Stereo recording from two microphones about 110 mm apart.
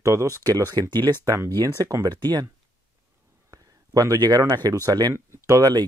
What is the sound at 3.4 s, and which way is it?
Speech, 30° right (ahead or behind).